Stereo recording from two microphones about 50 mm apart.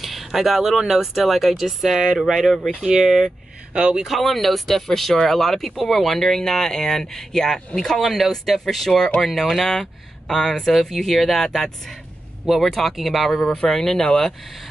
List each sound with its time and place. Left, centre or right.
0.0 s speech: centre
3.7 s speech: right
4.0 s speech: centre
12.4 s speech: centre
13.5 s speech: centre